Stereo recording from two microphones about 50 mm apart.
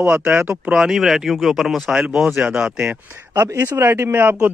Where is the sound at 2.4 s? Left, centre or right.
Right.